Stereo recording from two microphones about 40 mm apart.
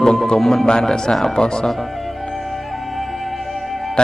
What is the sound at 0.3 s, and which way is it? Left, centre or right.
A man's voice, centre.